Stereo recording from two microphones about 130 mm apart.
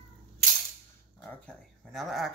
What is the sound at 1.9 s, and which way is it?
Speech, centre (ahead or behind).